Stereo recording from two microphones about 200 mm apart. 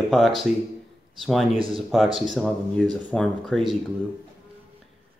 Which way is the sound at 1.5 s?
25° right (ahead or behind).